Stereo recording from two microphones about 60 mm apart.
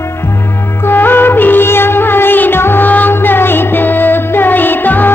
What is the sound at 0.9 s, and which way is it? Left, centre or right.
Music, left.